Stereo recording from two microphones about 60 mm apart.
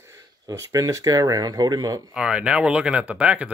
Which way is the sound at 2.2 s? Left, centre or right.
Centre.